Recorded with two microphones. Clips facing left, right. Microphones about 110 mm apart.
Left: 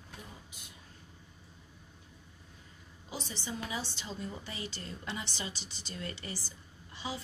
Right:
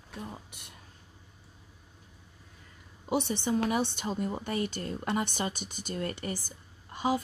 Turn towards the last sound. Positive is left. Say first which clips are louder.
# right 11 dB
turn(degrees=-50)  # may be behind; listen again after turning